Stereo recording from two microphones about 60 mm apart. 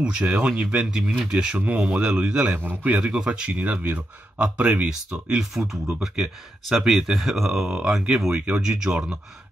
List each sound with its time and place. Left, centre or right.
0.0 s speech: centre
1.6 s speech: right
5.5 s speech: centre
8.4 s speech: centre